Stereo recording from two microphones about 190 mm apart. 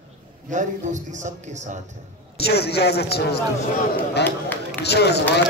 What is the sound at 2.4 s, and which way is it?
A man's voice, 60° left (ahead or behind).